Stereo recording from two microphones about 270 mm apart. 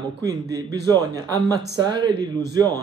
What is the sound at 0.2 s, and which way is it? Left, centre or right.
Speech, centre.